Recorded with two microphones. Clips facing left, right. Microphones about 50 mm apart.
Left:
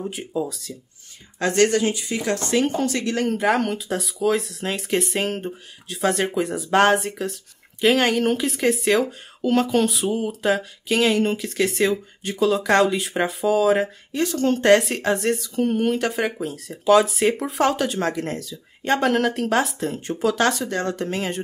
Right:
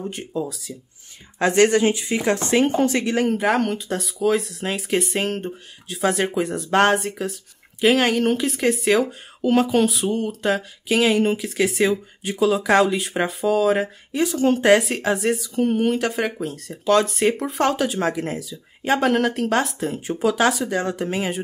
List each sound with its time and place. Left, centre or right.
0.0 s speech: centre
1.4 s speech: centre